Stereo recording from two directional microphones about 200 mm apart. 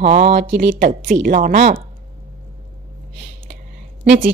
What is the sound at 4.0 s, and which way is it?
Speech, 45° right (ahead or behind).